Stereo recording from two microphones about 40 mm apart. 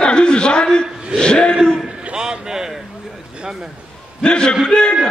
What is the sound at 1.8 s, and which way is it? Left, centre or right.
A man's voice, right.